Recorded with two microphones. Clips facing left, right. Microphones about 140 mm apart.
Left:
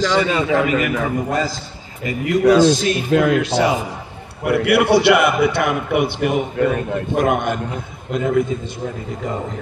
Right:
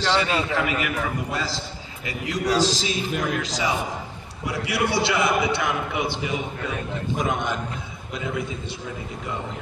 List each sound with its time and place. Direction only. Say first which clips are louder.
0.6 s a man's voice: left 7 dB; 45° left (ahead or behind)